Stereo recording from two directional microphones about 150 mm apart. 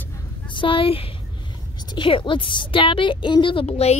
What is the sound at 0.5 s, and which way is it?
A woman's voice, 35° left (ahead or behind).